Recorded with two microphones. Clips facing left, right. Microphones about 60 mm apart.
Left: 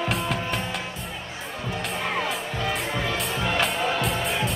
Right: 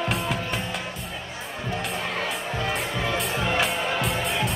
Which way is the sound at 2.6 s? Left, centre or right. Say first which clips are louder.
Even; centre.